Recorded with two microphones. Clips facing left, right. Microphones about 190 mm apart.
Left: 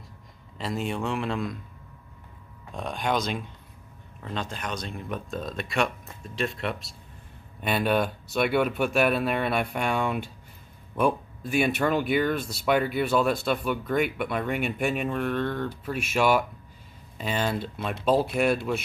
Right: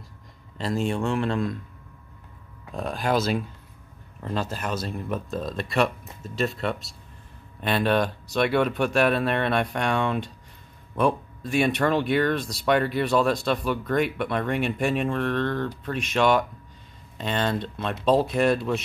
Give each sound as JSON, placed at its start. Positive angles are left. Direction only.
{"t": 0.6, "sound": "speech", "side_deg": 0}
{"t": 2.7, "sound": "speech", "side_deg": 0}